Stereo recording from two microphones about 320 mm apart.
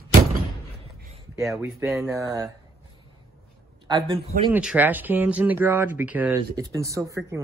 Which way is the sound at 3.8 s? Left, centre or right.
Centre.